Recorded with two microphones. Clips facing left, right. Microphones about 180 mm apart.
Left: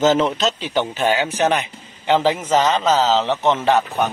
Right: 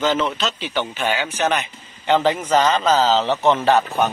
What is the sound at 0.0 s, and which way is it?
A man's voice, 45° left (ahead or behind).